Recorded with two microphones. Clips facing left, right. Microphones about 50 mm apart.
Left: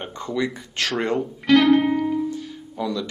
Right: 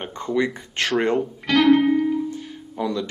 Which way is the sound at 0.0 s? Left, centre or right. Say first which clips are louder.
Right 3 dB; centre.